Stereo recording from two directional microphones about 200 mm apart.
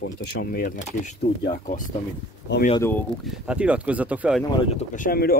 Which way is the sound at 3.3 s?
5° right (ahead or behind).